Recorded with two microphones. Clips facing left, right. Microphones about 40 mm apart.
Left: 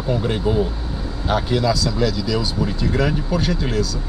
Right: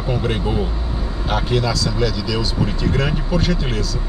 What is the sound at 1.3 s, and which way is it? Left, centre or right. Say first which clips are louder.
Speech: left 1 dB; centre.